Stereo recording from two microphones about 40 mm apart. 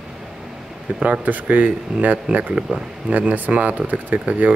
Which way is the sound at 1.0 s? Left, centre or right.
Right.